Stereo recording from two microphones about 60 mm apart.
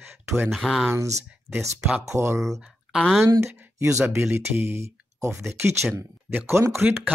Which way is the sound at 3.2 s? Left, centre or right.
Right.